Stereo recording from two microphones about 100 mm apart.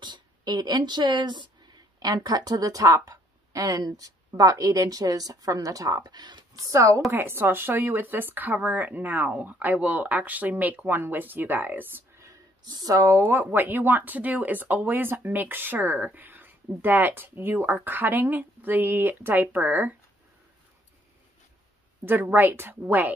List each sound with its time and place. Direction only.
0.0 s speech: 45° right (ahead or behind); by 12.0 s 20° right (ahead or behind)
12.2 s speech: 40° right (ahead or behind); by 20.0 s 20° right (ahead or behind)
22.0 s speech: 20° right (ahead or behind)